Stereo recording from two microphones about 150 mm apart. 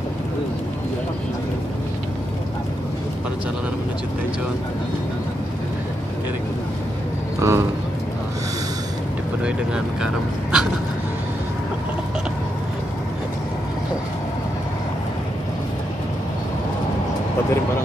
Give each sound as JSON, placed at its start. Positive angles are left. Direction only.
{"t": 7.3, "sound": "a man's voice", "side_deg": -20}
{"t": 10.0, "sound": "speech", "side_deg": -5}